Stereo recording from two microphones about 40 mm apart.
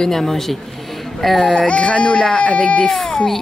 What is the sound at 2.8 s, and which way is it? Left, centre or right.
Speech, centre.